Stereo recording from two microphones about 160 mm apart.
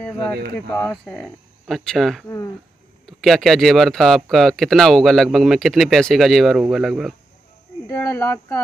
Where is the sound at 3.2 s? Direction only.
Centre (ahead or behind).